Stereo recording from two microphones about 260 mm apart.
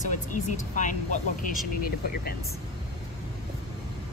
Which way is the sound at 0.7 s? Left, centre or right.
Left.